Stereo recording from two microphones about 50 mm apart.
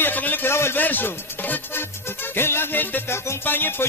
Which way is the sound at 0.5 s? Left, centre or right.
Left.